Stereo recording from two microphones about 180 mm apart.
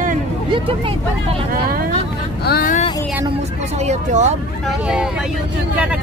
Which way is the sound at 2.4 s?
55° left (ahead or behind).